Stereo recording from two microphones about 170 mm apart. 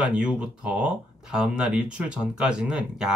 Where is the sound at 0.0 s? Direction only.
5° right (ahead or behind).